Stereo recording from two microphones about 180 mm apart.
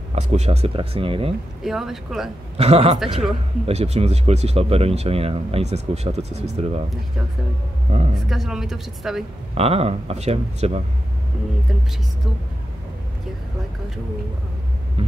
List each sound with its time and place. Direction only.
0.1 s speech: 35° right (ahead or behind)
1.6 s speech: centre (ahead or behind)
2.5 s speech: 35° right (ahead or behind)
7.9 s speech: 40° right (ahead or behind)
8.3 s speech: centre (ahead or behind)
9.6 s speech: 35° right (ahead or behind)
15.0 s speech: 35° right (ahead or behind)